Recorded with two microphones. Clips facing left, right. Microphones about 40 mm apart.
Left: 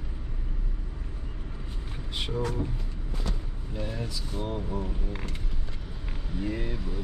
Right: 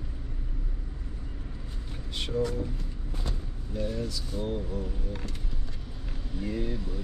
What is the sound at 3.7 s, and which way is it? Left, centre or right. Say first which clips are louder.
Speech: right 3 dB; left.